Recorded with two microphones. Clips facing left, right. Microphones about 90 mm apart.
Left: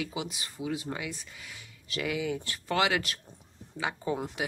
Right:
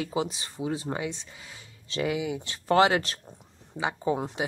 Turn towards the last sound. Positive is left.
turn(degrees=-25)  # may be behind; listen again after turning